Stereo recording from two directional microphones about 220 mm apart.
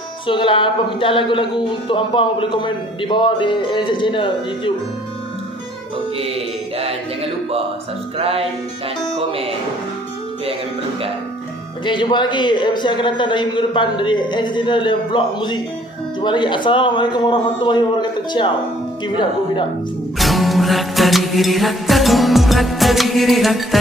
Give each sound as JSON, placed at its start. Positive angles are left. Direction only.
{"t": 0.3, "sound": "speech", "side_deg": 20}
{"t": 8.2, "sound": "music", "side_deg": -25}
{"t": 11.8, "sound": "speech", "side_deg": 20}
{"t": 20.2, "sound": "music", "side_deg": 0}